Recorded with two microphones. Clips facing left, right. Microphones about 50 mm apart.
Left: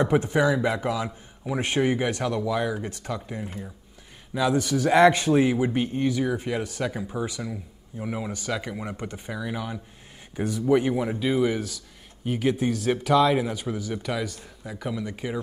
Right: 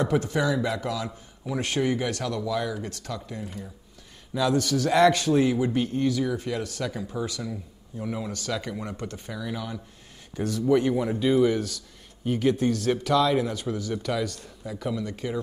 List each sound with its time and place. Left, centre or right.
0.0 s a man's voice: left